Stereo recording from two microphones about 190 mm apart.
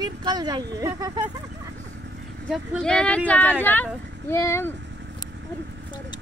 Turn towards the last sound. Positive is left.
turn(degrees=15)  # may be behind; listen again after turning